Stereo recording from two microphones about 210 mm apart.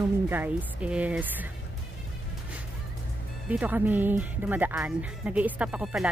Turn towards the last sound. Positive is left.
turn(degrees=0)  # may be behind; listen again after turning